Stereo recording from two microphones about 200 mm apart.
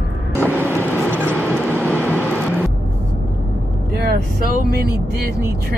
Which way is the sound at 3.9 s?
50° right (ahead or behind).